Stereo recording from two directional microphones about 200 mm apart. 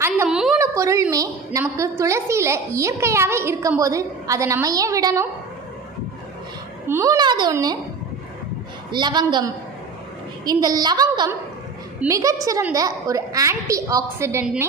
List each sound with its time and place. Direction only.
0.0 s a sound: 10° right (ahead or behind)
0.6 s a woman's voice: 15° right (ahead or behind)
6.9 s a child's voice: 15° right (ahead or behind)
8.9 s a child's voice: 20° right (ahead or behind)